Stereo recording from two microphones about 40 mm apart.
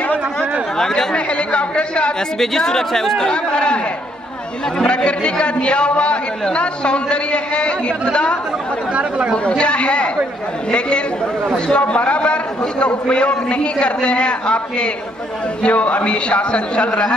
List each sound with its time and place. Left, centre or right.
0.4 s a sound: centre
1.1 s speech: left
2.3 s speech: centre
4.8 s a man's voice: left
11.7 s a man's voice: left